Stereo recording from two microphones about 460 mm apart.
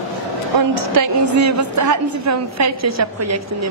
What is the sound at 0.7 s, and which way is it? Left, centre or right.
A woman's voice, right.